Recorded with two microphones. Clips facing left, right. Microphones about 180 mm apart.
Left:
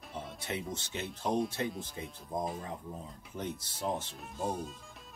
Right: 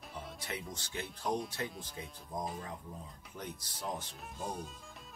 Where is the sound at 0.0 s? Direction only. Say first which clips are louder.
Left 3 dB; centre (ahead or behind).